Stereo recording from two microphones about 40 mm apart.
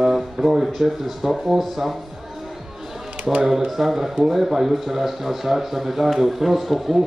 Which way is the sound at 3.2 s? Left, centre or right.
Right.